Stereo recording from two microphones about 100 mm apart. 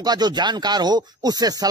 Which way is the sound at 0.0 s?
45° right (ahead or behind).